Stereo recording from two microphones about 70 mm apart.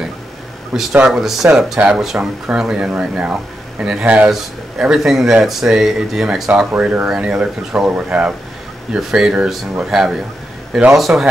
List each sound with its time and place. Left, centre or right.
0.7 s speech: centre
4.3 s speech: centre
6.8 s speech: centre